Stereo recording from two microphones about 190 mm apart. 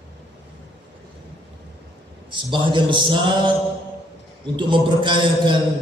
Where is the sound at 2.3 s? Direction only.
25° right (ahead or behind).